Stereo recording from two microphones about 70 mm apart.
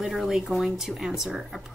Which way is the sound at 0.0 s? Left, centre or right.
Centre.